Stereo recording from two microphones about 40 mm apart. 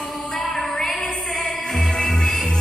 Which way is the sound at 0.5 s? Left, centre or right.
Centre.